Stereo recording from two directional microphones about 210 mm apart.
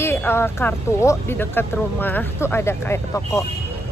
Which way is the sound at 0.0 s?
10° left (ahead or behind).